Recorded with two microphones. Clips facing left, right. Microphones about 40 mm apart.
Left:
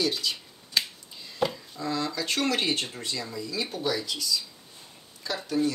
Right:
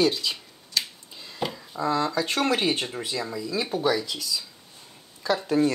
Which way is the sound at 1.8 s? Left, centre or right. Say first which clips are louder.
Right 6 dB; centre.